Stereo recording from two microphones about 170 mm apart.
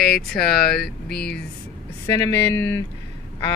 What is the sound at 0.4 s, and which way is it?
Speech, 60° left (ahead or behind).